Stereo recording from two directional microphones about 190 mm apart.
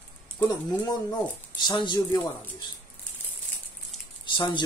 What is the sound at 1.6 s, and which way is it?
Speech, 25° left (ahead or behind).